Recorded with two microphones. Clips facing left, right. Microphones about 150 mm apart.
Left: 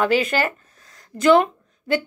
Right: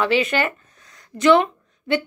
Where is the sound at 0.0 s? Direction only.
45° left (ahead or behind).